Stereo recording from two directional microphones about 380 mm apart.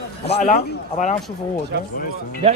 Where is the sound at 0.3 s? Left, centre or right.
Left.